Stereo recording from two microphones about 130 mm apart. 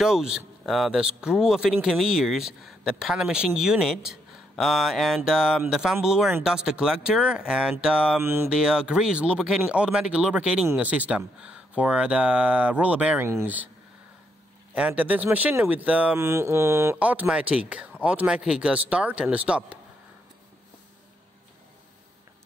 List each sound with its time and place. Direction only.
0.0 s speech: 5° right (ahead or behind)
8.2 s speech: 15° right (ahead or behind)
8.5 s speech: 5° right (ahead or behind)
14.7 s speech: 10° right (ahead or behind)